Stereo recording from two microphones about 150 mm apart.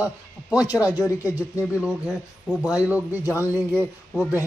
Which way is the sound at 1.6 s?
10° right (ahead or behind).